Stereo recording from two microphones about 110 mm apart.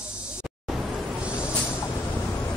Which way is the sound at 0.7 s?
Centre (ahead or behind).